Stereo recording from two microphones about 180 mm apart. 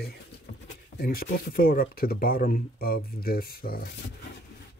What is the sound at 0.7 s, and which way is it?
Speech, 60° left (ahead or behind).